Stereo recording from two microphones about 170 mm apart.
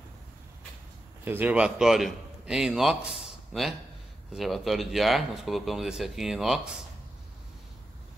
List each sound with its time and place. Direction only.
1.2 s a man's voice: 10° right (ahead or behind)